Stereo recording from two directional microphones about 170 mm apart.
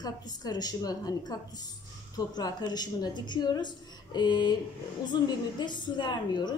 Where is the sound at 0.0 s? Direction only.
25° left (ahead or behind).